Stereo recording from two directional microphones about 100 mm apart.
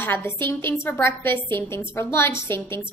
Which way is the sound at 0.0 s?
20° left (ahead or behind).